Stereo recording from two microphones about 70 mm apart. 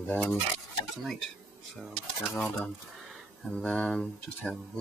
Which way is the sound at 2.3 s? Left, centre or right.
Left.